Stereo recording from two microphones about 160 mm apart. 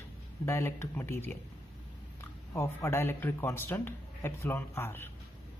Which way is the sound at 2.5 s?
15° left (ahead or behind).